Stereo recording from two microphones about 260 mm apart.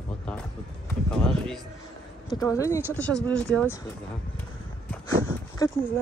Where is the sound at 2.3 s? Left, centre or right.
Centre.